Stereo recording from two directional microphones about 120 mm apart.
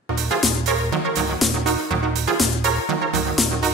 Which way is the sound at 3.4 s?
Centre (ahead or behind).